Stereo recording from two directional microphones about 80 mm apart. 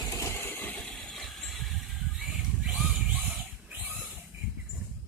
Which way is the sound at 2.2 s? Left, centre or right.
Centre.